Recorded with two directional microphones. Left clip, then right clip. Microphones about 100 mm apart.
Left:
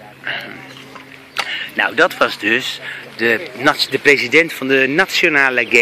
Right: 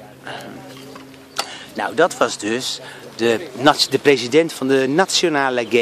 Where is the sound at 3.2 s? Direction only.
35° right (ahead or behind).